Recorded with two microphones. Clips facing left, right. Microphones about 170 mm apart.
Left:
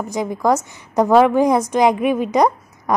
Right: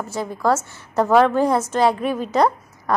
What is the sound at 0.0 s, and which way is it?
A woman's voice, 15° left (ahead or behind).